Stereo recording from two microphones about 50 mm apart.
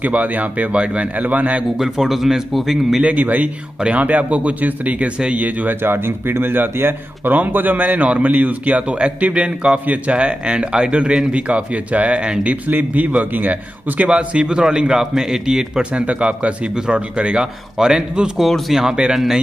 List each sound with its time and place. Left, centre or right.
0.0 s speech: right
1.8 s a man's voice: centre
3.0 s speech: right
5.8 s speech: right
12.6 s a man's voice: right; by 15.8 s centre
15.8 s a man's voice: right
18.4 s a man's voice: centre